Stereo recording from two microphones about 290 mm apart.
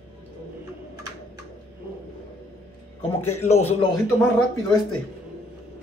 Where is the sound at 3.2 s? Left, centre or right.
Left.